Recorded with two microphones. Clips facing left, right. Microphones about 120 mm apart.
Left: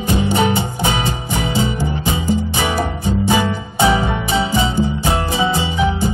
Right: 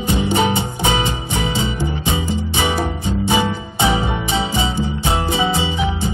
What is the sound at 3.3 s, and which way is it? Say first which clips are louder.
Music: right 1 dB; 20° right (ahead or behind).